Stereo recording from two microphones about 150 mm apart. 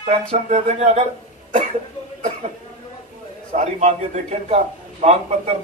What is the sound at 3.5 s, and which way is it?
Speech, 50° right (ahead or behind).